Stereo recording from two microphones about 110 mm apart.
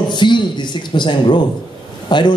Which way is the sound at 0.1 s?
45° left (ahead or behind).